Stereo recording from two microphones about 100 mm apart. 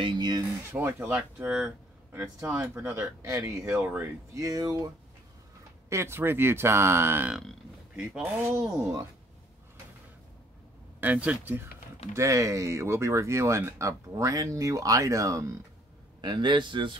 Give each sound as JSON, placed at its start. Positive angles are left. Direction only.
{"t": 0.0, "sound": "a man's voice", "side_deg": -45}
{"t": 0.7, "sound": "speech", "side_deg": -20}
{"t": 3.0, "sound": "speech", "side_deg": -30}
{"t": 3.8, "sound": "speech", "side_deg": -20}
{"t": 4.4, "sound": "speech", "side_deg": -35}
{"t": 5.9, "sound": "speech", "side_deg": -25}
{"t": 7.9, "sound": "speech", "side_deg": -10}
{"t": 8.5, "sound": "speech", "side_deg": -25}
{"t": 11.0, "sound": "speech", "side_deg": -15}
{"t": 12.1, "sound": "speech", "side_deg": -30}
{"t": 16.2, "sound": "a man's voice", "side_deg": -50}